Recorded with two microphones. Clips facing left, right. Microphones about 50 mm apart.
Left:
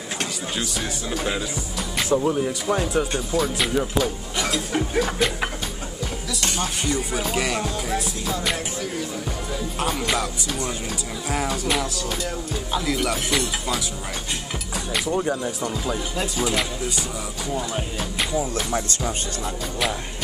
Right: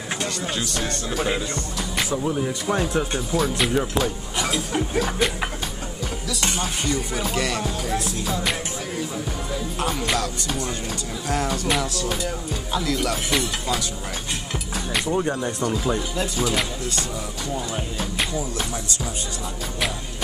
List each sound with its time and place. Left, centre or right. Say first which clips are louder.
0.6 s speech: right 1 dB; centre
2.1 s music: left 5 dB; centre
2.4 s speech: even; centre
4.6 s speech: left 1 dB; centre
6.9 s music: left 1 dB; centre
7.6 s speech: even; centre
9.8 s music: even; centre
11.2 s speech: right 1 dB; centre
12.7 s music: even; centre
15.1 s speech: even; centre
18.5 s speech: left 3 dB; left